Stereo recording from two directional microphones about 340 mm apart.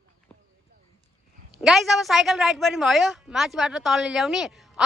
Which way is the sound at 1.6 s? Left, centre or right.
Centre.